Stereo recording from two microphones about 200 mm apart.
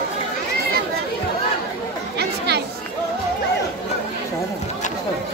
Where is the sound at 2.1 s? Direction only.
55° right (ahead or behind).